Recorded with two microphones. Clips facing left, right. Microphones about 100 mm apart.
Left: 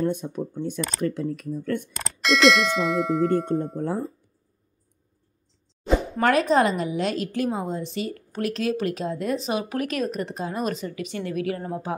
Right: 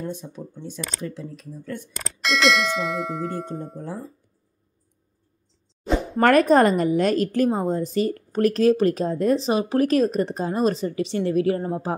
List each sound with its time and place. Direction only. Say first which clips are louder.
0.0 s speech: left 7 dB; 55° left (ahead or behind)
2.0 s clang: left 1 dB; centre (ahead or behind)
3.7 s speech: left 6 dB; 55° left (ahead or behind)
6.1 s a woman's voice: right 5 dB; 50° right (ahead or behind); by 11.9 s 30° right (ahead or behind)